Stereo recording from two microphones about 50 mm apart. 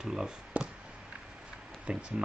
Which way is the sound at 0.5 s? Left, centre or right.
Right.